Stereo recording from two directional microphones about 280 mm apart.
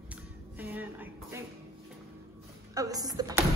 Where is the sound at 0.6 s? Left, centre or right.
Centre.